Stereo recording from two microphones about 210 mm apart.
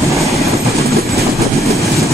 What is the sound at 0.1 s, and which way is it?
Train, centre (ahead or behind).